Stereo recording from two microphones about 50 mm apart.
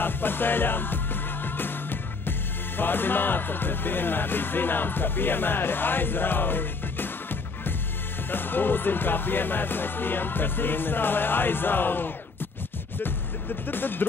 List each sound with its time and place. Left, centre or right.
0.0 s music: left
2.8 s speech: left
13.7 s speech: left